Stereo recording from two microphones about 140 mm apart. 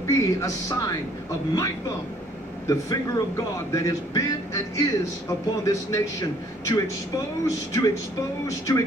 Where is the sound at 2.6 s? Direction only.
25° left (ahead or behind).